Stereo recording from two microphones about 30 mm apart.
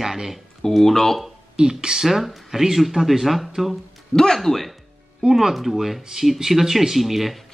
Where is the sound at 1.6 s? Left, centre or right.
Right.